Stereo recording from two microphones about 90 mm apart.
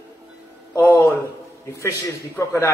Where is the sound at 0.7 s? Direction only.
30° left (ahead or behind).